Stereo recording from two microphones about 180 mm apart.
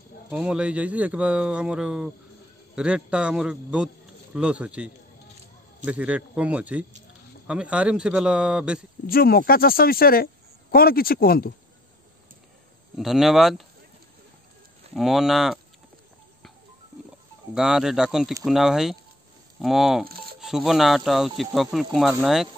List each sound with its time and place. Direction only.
0.3 s a man's voice: 5° right (ahead or behind)
9.0 s speech: 55° left (ahead or behind)
12.9 s speech: centre (ahead or behind)
15.0 s speech: centre (ahead or behind)
17.6 s speech: 5° right (ahead or behind)
20.1 s chopping: 60° right (ahead or behind)
20.3 s speech: centre (ahead or behind)